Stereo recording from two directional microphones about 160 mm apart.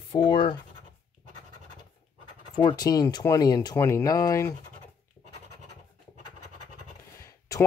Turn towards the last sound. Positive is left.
turn(degrees=20)  # may be behind; listen again after turning